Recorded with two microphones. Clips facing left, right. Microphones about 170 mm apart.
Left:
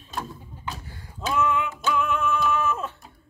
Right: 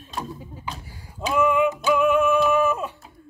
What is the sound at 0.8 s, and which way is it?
Music, 10° right (ahead or behind).